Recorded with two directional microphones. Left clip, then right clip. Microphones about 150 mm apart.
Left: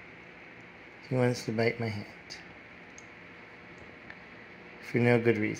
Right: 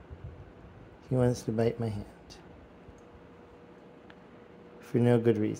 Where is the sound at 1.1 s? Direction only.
30° right (ahead or behind).